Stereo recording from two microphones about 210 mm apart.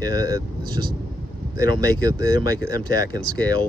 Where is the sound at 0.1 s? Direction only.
15° right (ahead or behind).